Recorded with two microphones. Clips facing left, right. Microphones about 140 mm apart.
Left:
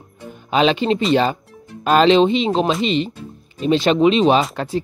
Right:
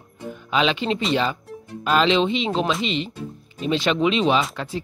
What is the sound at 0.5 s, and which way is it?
Speech, 40° left (ahead or behind).